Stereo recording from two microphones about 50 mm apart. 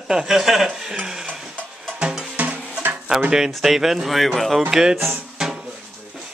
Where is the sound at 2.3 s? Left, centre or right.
Right.